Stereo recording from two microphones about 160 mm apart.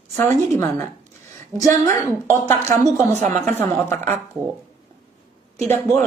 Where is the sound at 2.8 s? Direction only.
50° right (ahead or behind).